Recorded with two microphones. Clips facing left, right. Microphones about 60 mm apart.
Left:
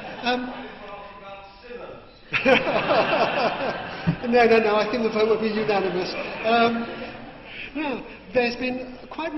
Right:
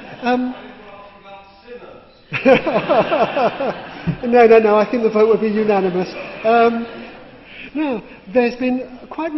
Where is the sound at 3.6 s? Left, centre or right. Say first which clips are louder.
Right 5 dB; right.